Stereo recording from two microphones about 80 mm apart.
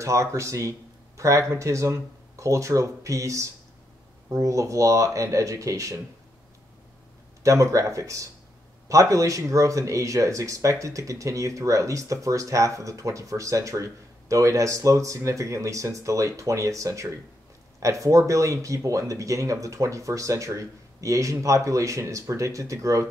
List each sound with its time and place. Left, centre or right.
0.0 s speech: right
7.4 s speech: right